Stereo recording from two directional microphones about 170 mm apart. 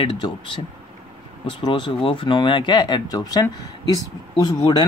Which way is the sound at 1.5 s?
25° left (ahead or behind).